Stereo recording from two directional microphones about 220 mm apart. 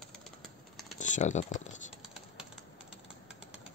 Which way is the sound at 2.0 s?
Centre (ahead or behind).